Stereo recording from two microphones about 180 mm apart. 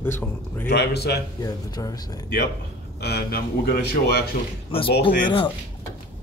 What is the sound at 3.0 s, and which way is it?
Speech, 65° left (ahead or behind).